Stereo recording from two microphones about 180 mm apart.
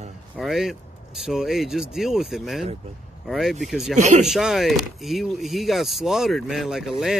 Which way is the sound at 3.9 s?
40° right (ahead or behind).